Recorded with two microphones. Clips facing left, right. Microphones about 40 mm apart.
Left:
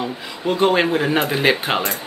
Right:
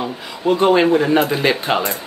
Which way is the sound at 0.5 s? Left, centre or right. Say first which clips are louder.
Right 4 dB; centre.